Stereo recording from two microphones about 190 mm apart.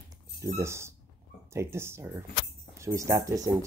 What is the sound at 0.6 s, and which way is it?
Speech, 15° right (ahead or behind).